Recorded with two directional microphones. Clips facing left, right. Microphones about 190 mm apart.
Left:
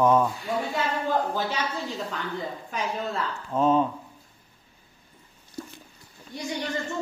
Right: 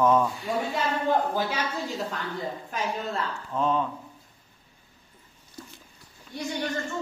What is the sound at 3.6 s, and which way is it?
Speech, 20° left (ahead or behind).